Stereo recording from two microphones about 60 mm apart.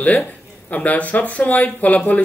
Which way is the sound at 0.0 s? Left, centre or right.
Left.